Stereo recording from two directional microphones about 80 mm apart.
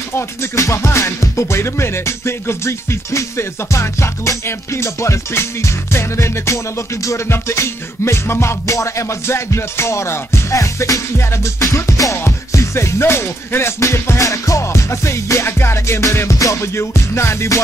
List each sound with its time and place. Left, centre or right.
0.4 s music: left